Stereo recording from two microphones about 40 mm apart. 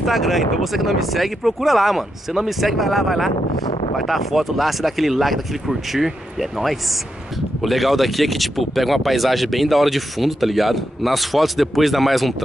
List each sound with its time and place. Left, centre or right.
0.0 s speech: centre